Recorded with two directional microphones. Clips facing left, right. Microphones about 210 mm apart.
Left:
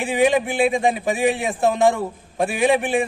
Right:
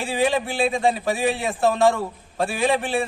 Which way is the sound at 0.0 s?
15° left (ahead or behind).